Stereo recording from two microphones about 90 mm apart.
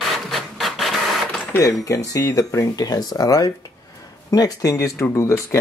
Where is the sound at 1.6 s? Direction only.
40° left (ahead or behind).